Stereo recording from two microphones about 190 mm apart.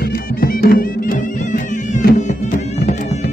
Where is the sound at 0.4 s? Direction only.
50° left (ahead or behind).